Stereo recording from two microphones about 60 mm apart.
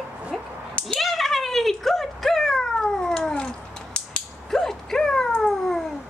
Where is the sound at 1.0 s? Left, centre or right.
Centre.